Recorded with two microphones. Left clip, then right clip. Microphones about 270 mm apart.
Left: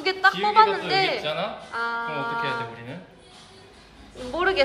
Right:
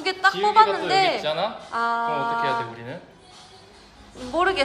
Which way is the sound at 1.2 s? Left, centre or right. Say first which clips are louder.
Right 3 dB; right.